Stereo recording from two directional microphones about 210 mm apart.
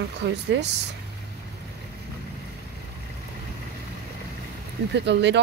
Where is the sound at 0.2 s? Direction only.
55° right (ahead or behind).